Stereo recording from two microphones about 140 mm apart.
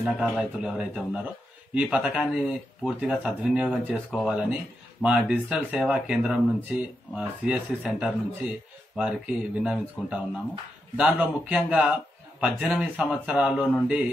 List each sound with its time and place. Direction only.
0.0 s speech: 5° right (ahead or behind)